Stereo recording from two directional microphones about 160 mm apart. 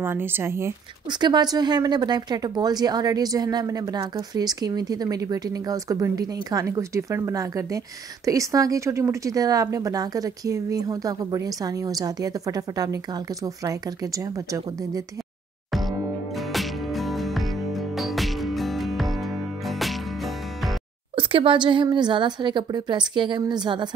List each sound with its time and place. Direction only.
0.0 s a woman's voice: 15° right (ahead or behind)
16.5 s music: centre (ahead or behind)
21.2 s a woman's voice: 35° right (ahead or behind)